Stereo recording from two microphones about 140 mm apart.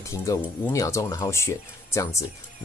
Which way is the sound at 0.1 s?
20° left (ahead or behind).